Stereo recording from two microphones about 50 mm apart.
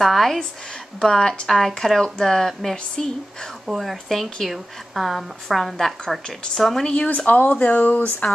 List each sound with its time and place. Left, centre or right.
0.0 s a woman's voice: centre
3.6 s a woman's voice: centre
4.1 s a woman's voice: centre
7.2 s speech: left